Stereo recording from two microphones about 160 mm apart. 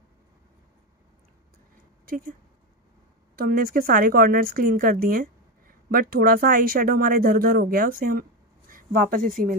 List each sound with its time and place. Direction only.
2.0 s speech: 65° right (ahead or behind)
3.3 s speech: 65° right (ahead or behind)